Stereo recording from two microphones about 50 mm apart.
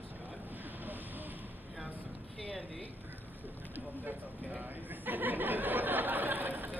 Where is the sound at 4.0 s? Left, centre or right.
Right.